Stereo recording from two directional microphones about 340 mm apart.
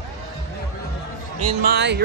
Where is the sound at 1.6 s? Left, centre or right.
Right.